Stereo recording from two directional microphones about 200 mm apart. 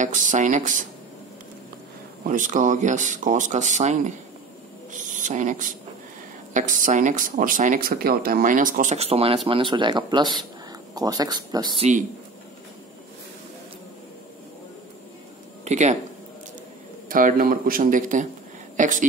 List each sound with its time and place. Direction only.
0.0 s speech: 40° right (ahead or behind)
2.2 s speech: 40° right (ahead or behind); by 11.9 s 25° right (ahead or behind)
15.6 s speech: 35° right (ahead or behind)
17.1 s speech: 45° right (ahead or behind)